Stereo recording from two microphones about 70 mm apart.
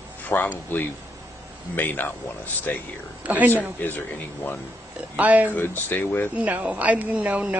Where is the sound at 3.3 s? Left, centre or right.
Right.